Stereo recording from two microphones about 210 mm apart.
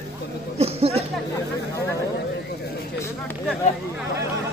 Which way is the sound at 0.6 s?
30° right (ahead or behind).